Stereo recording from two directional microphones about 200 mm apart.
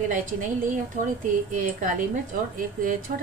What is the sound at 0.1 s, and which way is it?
A woman's voice, 40° right (ahead or behind).